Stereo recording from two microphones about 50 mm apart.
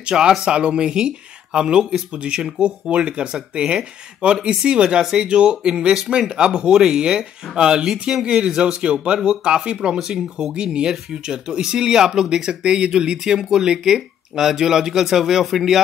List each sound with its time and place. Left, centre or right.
0.1 s speech: centre
0.4 s speech: right